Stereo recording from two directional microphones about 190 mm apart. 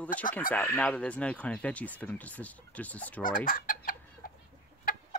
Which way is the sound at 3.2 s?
50° left (ahead or behind).